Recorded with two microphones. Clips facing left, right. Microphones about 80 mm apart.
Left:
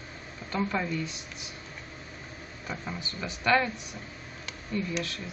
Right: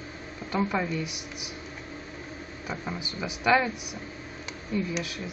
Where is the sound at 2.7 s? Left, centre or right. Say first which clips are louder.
Right 2 dB; centre.